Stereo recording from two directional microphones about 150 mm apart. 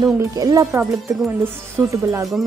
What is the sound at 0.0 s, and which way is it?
Speech, 25° right (ahead or behind).